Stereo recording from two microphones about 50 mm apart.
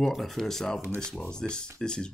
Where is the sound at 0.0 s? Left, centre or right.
Centre.